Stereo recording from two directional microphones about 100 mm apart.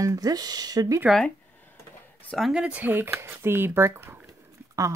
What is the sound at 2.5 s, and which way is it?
Speech, 10° right (ahead or behind).